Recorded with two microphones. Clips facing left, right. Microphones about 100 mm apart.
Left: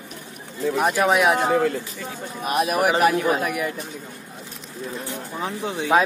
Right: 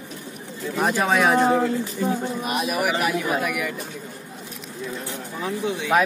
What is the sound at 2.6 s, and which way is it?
Speech, 45° left (ahead or behind).